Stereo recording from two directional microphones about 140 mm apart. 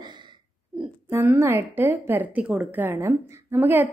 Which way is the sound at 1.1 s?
15° right (ahead or behind).